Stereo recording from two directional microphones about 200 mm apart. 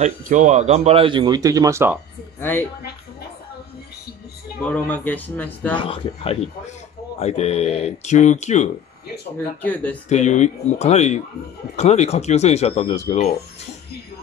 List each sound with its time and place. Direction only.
0.0 s speech: 35° right (ahead or behind); by 2.0 s 15° right (ahead or behind)
4.6 s a man's voice: 5° left (ahead or behind)
5.8 s speech: 30° left (ahead or behind)
9.6 s a man's voice: 10° left (ahead or behind)
10.0 s speech: 35° left (ahead or behind)